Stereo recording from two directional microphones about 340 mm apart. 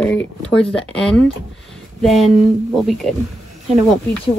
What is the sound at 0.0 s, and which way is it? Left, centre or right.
Speech, centre.